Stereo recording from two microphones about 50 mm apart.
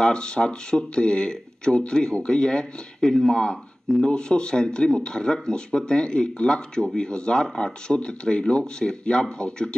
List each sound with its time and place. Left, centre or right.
0.0 s speech: centre